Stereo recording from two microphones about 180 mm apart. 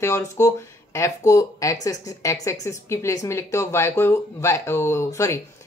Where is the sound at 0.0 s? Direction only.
15° left (ahead or behind).